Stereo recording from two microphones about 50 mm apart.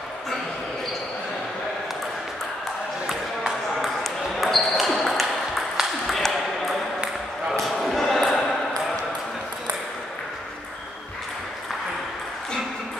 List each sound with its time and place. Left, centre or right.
3.1 s ping: centre
7.5 s a sound: centre
8.0 s basketball bounce: centre